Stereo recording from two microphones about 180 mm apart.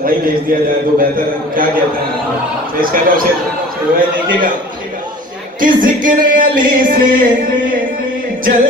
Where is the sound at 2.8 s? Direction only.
50° right (ahead or behind).